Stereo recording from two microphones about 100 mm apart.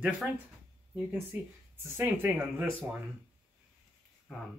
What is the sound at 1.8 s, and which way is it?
Speech, 25° right (ahead or behind).